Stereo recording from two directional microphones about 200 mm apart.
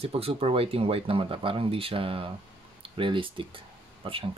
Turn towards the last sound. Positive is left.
turn(degrees=-25)  # may be behind; listen again after turning